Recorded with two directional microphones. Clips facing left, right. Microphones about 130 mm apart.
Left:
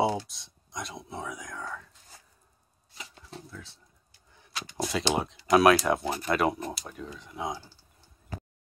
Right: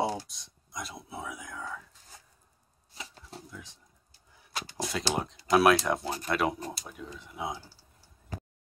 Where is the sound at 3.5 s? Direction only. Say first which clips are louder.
Left 1 dB; 15° right (ahead or behind).